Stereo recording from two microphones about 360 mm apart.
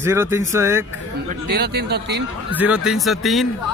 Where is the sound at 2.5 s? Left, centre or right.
Centre.